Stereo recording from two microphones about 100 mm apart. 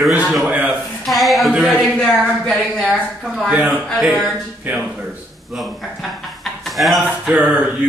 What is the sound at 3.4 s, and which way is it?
Speech, 15° right (ahead or behind).